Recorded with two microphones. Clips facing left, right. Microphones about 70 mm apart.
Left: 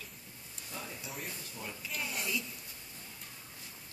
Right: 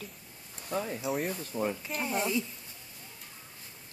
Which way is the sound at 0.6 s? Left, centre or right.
Right.